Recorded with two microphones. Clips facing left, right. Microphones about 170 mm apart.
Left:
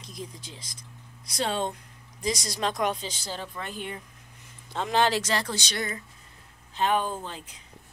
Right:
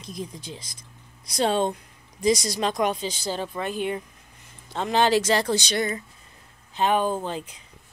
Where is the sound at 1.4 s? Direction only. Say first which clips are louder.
Right 6 dB; 25° right (ahead or behind).